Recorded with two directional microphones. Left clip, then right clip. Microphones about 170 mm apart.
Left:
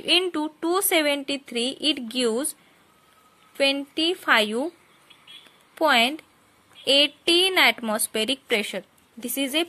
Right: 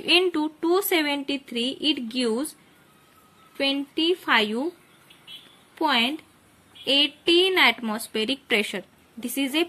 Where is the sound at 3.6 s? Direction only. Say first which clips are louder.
Left 2 dB; 50° left (ahead or behind).